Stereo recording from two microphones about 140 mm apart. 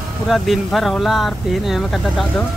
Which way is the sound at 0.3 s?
Centre (ahead or behind).